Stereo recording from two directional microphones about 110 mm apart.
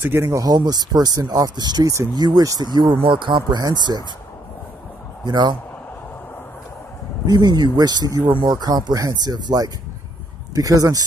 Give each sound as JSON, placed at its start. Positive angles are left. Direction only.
{"t": 0.0, "sound": "speech", "side_deg": -20}
{"t": 5.2, "sound": "speech", "side_deg": -45}
{"t": 7.2, "sound": "speech", "side_deg": -35}